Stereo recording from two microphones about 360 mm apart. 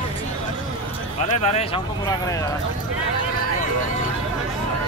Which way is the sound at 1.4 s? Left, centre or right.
Centre.